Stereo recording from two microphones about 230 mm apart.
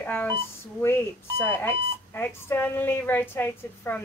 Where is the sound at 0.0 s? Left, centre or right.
Centre.